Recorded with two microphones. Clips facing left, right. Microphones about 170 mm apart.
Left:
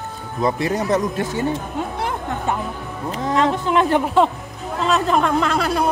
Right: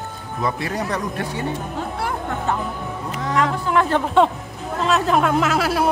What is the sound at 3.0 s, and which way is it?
Speech, 30° left (ahead or behind).